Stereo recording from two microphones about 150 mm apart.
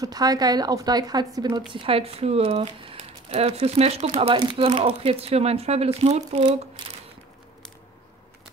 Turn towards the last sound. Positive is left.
turn(degrees=-35)  # may be behind; listen again after turning